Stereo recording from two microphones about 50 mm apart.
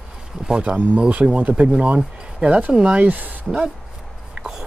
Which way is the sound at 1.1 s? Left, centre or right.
Right.